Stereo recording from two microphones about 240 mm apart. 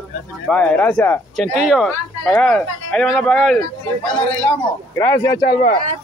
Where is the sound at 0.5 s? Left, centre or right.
Centre.